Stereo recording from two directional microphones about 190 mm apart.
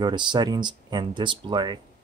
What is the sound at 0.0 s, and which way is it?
Speech, 25° right (ahead or behind).